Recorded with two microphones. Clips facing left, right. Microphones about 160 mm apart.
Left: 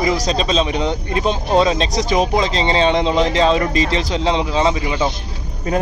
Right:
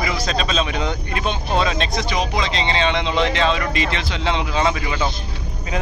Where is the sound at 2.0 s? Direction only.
45° left (ahead or behind); by 5.1 s 20° left (ahead or behind).